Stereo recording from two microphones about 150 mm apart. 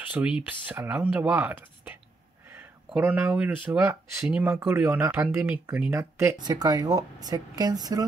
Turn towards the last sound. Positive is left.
turn(degrees=-25)  # may be behind; listen again after turning